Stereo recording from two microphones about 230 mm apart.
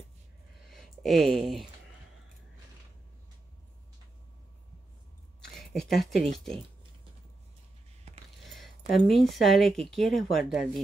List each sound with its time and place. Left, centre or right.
0.7 s speech: centre
5.7 s speech: centre
8.5 s speech: centre